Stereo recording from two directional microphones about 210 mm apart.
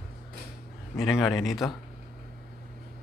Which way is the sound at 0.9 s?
Centre (ahead or behind).